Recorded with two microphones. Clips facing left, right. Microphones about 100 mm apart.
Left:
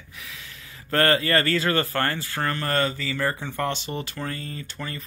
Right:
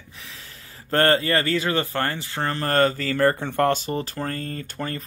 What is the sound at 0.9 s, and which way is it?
Speech, 30° right (ahead or behind).